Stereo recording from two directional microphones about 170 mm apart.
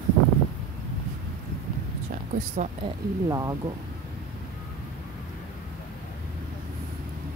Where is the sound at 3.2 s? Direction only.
20° right (ahead or behind).